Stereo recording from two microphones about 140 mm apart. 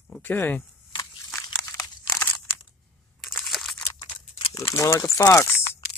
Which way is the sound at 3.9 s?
35° left (ahead or behind).